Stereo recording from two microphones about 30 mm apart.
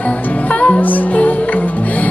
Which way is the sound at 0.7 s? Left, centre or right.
Left.